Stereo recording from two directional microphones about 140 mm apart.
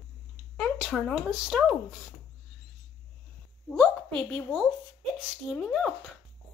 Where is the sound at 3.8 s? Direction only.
10° left (ahead or behind).